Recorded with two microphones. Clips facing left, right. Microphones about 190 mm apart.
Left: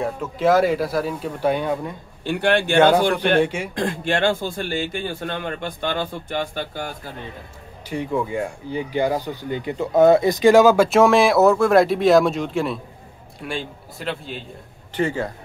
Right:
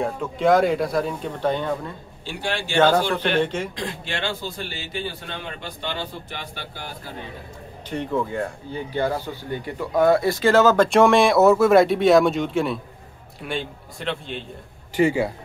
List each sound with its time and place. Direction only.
0.0 s speech: 5° left (ahead or behind)
2.2 s a man's voice: 60° left (ahead or behind)
2.8 s speech: 15° left (ahead or behind)
3.7 s a man's voice: 50° left (ahead or behind)
7.9 s speech: 10° left (ahead or behind)
15.0 s speech: 10° right (ahead or behind)